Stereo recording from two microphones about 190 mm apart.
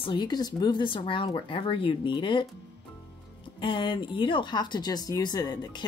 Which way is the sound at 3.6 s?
25° left (ahead or behind).